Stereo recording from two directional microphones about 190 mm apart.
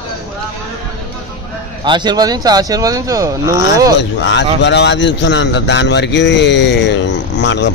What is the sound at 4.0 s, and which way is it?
A man's voice, 70° left (ahead or behind).